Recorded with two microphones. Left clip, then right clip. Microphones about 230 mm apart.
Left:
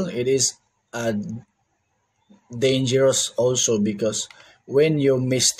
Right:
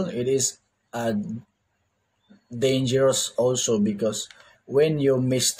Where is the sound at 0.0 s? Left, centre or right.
Centre.